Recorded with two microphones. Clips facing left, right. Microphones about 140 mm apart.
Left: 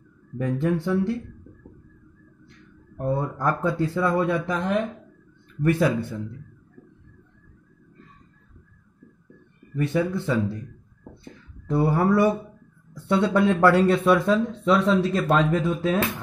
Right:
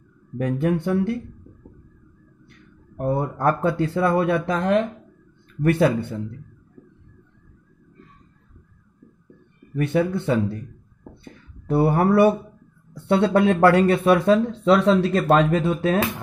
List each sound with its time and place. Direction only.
0.4 s speech: 65° right (ahead or behind)
3.0 s speech: 20° right (ahead or behind)
3.3 s speech: 65° right (ahead or behind)
9.8 s speech: 65° right (ahead or behind)
11.6 s speech: 65° right (ahead or behind)